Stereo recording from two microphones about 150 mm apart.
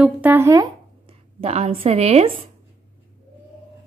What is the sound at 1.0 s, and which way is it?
Speech, 45° right (ahead or behind).